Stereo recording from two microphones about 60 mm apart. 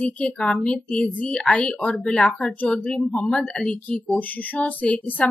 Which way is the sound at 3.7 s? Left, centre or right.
Left.